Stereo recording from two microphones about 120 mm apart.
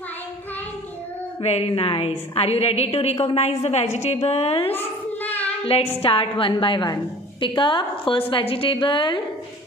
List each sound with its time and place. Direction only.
1.4 s a woman's voice: 60° left (ahead or behind)
4.7 s a sound: 15° left (ahead or behind)
5.7 s a woman's voice: 55° left (ahead or behind)